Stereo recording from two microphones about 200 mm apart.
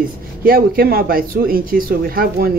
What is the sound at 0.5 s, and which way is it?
Speech, 50° right (ahead or behind).